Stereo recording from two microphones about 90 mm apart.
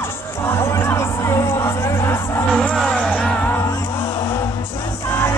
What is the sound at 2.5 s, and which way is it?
Music, 10° left (ahead or behind).